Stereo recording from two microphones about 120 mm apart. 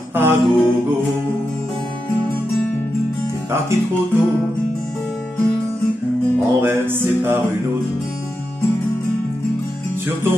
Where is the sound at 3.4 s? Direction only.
20° right (ahead or behind).